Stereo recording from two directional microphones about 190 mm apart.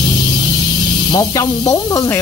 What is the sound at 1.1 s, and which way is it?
Speech, 20° left (ahead or behind).